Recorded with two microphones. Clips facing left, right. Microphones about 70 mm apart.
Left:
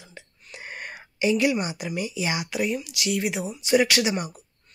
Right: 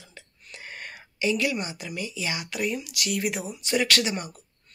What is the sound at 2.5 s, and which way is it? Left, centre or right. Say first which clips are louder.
Speech: left 3 dB; centre.